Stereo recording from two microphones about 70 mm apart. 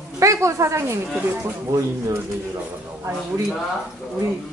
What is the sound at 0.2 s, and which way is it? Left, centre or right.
Speech, right.